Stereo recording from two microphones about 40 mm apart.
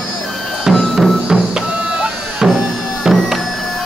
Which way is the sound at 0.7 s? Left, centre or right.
Centre.